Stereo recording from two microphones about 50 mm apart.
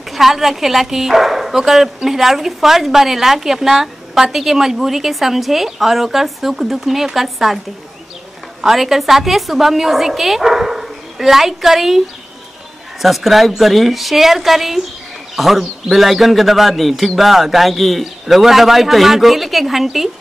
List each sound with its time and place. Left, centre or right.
0.1 s speech: centre
13.0 s speech: centre